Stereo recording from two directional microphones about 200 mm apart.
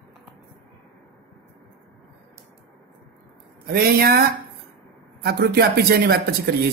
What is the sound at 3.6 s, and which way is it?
Speech, 50° right (ahead or behind).